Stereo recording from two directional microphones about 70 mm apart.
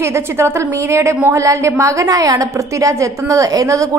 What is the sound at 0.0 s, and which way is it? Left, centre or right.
A woman's voice, right.